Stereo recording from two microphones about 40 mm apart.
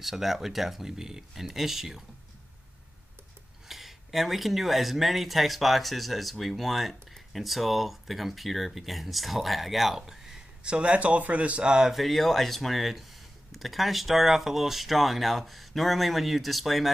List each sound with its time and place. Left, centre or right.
0.0 s speech: centre
3.6 s speech: centre
10.6 s speech: right
11.9 s speech: centre